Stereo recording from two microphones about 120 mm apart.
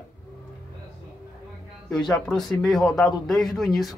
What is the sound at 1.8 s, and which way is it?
Speech, centre (ahead or behind).